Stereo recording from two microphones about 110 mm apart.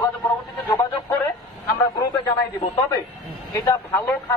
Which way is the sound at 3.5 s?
30° left (ahead or behind).